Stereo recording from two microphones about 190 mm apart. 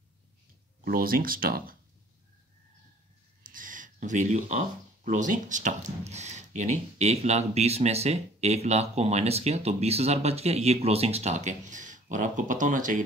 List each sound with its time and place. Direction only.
0.8 s speech: 50° right (ahead or behind)
3.4 s speech: 45° right (ahead or behind)